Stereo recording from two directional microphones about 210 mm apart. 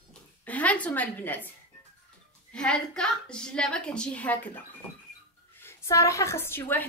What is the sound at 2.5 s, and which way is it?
A woman's voice, 5° left (ahead or behind).